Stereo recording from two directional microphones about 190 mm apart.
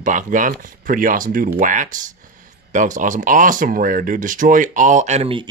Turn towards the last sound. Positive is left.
turn(degrees=-30)  # may be behind; listen again after turning